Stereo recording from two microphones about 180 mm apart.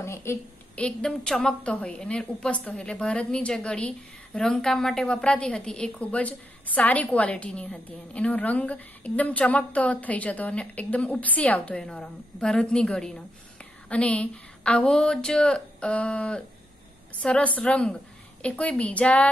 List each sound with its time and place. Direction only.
0.0 s a woman's voice: 15° left (ahead or behind)